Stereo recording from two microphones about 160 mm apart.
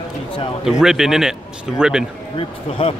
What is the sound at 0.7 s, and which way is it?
Speech, 5° right (ahead or behind).